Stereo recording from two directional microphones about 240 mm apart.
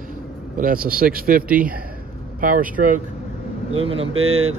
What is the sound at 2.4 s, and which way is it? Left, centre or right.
Speech, right.